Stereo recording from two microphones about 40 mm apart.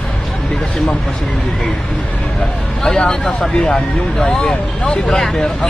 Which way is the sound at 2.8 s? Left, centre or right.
Centre.